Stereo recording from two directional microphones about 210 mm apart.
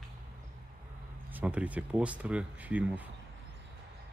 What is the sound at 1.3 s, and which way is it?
Speech, 5° right (ahead or behind).